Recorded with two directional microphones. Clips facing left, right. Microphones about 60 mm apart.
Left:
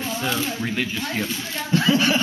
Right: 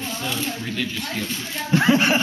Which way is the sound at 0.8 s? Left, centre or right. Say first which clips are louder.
Left 1 dB; centre.